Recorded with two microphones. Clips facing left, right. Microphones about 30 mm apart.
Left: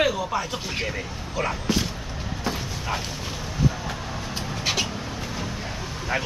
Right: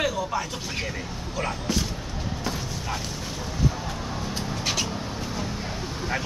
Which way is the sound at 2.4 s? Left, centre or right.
Centre.